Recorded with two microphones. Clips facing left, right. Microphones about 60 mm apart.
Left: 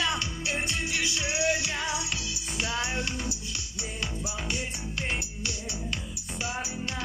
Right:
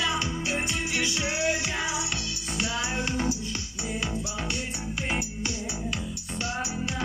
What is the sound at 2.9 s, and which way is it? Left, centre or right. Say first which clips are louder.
Music: right 2 dB; right.